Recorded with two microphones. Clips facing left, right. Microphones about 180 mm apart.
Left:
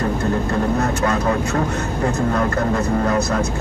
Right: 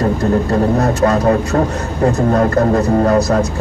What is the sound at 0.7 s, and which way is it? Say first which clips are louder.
Speech: right 6 dB; 35° right (ahead or behind).